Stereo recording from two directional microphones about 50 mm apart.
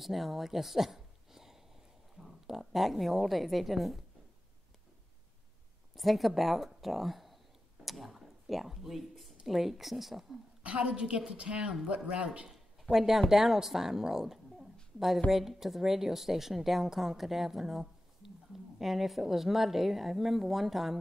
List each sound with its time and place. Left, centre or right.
0.0 s a woman's voice: centre
5.9 s speech: centre
7.8 s a sound: centre
9.5 s speech: centre
10.6 s a woman's voice: right
12.9 s speech: centre